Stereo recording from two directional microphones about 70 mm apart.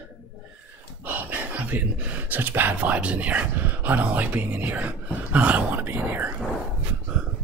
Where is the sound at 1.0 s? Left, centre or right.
Right.